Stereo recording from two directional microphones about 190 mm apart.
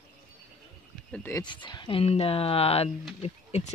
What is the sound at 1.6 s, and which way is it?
Speech, 25° left (ahead or behind).